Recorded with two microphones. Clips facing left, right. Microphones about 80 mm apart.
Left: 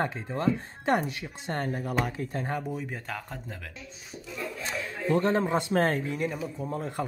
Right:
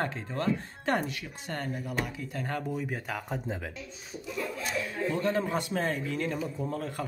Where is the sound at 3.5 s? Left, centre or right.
Centre.